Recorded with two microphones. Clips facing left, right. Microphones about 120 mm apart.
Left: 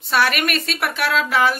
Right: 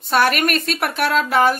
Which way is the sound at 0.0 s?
45° right (ahead or behind).